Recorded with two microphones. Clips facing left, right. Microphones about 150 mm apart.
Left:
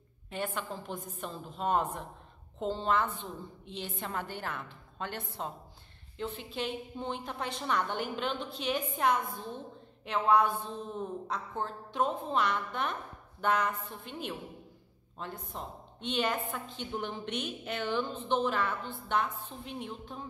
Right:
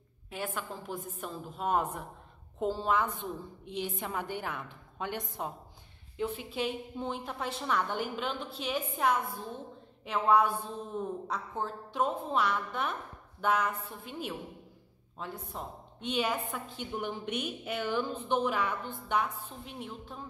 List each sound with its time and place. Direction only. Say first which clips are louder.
0.3 s a woman's voice: left 1 dB; 5° right (ahead or behind)